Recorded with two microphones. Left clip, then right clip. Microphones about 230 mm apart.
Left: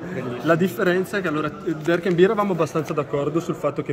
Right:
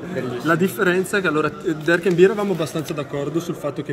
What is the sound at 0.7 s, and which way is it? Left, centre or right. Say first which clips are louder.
Speech: right 2 dB; centre.